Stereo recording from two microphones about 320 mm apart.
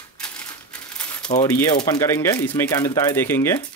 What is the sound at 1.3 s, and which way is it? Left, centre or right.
Speech, centre.